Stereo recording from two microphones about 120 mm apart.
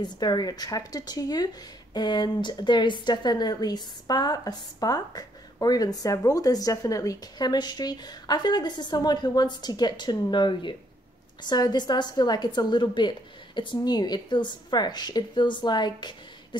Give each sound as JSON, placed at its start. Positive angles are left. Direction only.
{"t": 0.0, "sound": "speech", "side_deg": 35}